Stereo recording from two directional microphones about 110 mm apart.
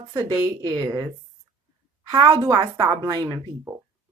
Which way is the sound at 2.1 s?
40° right (ahead or behind).